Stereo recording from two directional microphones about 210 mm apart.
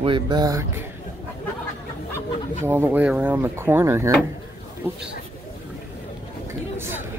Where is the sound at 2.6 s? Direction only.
10° right (ahead or behind).